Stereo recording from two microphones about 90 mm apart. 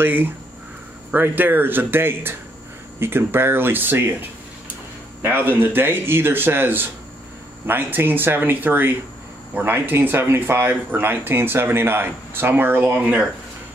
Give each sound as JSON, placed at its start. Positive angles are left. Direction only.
{"t": 0.0, "sound": "speech", "side_deg": -20}